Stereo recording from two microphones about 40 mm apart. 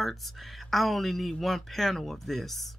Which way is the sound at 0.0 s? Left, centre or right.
Centre.